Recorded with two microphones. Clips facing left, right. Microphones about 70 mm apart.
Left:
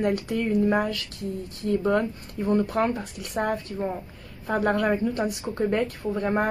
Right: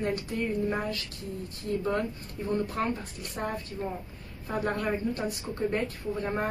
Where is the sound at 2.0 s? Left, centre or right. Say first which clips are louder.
Left 5 dB; left.